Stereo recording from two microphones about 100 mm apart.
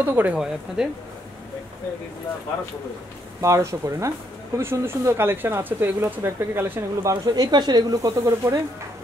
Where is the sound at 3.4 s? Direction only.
30° right (ahead or behind).